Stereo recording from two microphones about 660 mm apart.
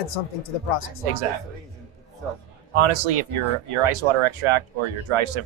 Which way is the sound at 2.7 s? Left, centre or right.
Right.